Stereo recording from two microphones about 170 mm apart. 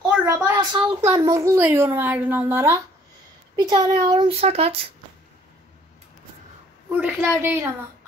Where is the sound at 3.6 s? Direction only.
25° right (ahead or behind).